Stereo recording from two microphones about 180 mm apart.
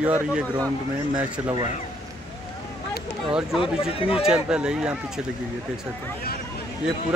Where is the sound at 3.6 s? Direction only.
30° left (ahead or behind).